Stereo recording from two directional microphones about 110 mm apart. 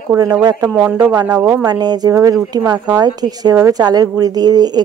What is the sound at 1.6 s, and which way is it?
Speech, 40° right (ahead or behind).